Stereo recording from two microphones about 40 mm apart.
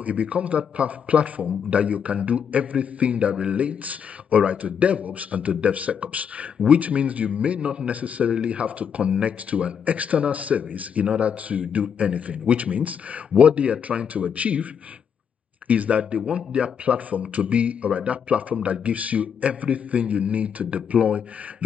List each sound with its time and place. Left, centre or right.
0.0 s speech: right